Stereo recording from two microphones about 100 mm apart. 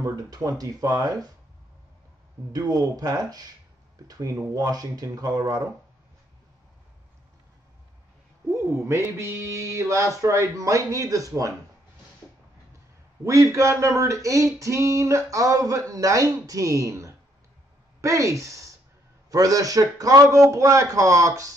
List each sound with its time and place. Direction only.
0.0 s speech: 35° right (ahead or behind)
2.5 s speech: 40° right (ahead or behind)
8.7 s speech: 25° right (ahead or behind)
13.2 s a woman's voice: 30° right (ahead or behind)